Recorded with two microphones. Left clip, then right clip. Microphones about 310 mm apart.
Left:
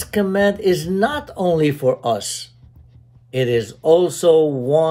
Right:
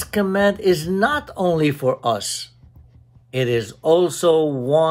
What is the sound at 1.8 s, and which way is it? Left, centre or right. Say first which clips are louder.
Speech: left 3 dB; centre.